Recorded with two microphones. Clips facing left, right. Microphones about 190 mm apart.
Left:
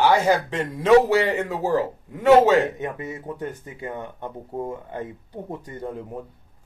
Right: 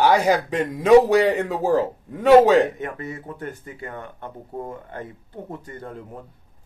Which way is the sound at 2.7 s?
20° left (ahead or behind).